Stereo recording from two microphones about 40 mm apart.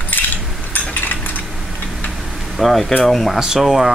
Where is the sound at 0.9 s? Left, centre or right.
Left.